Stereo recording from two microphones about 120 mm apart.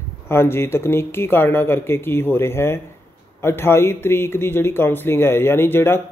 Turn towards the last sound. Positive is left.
turn(degrees=20)  # may be behind; listen again after turning